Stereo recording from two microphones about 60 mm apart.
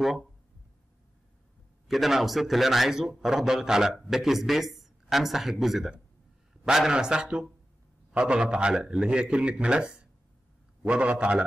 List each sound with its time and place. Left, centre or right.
1.9 s a man's voice: centre